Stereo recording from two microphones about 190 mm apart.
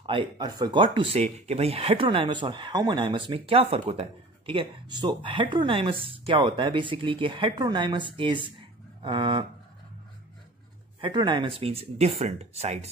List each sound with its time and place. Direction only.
0.0 s speech: 25° right (ahead or behind)
11.0 s speech: 25° right (ahead or behind)